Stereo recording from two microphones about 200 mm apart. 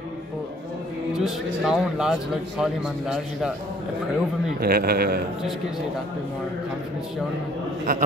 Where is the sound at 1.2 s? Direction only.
5° right (ahead or behind).